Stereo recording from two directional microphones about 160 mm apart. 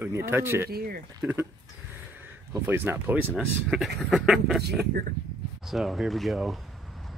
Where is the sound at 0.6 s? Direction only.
75° right (ahead or behind).